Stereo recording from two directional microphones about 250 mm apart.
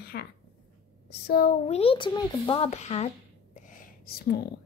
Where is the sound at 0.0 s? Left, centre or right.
Left.